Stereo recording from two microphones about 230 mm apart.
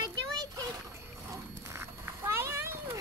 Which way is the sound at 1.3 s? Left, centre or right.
Centre.